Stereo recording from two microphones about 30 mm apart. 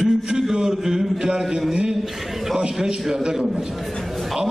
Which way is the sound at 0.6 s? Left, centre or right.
Centre.